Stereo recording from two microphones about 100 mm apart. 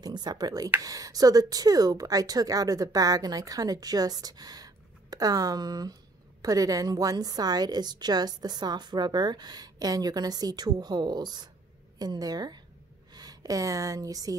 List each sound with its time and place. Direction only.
0.0 s speech: 45° right (ahead or behind)